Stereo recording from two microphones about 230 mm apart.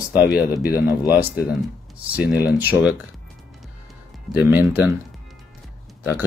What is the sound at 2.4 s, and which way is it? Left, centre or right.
Speech, left.